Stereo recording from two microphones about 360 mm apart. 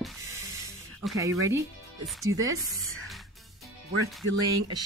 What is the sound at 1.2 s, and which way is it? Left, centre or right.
A woman's voice, centre.